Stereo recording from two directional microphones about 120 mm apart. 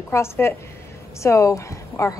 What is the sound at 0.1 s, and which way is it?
Speech, 20° left (ahead or behind).